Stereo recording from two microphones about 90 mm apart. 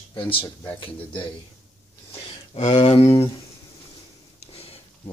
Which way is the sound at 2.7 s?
70° left (ahead or behind).